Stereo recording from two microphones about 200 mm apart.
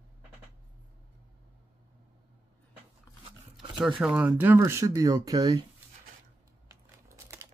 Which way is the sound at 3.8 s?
5° right (ahead or behind).